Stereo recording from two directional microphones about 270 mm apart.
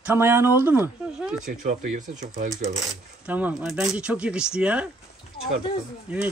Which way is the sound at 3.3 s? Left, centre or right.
Centre.